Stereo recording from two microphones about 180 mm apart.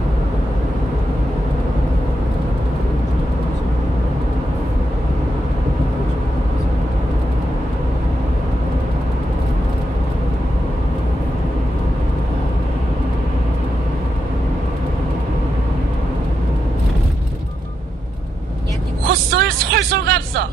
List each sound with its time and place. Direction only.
19.0 s vehicle: 60° right (ahead or behind)